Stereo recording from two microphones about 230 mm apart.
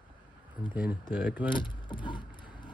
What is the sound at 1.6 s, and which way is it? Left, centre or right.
Keys jangling, centre.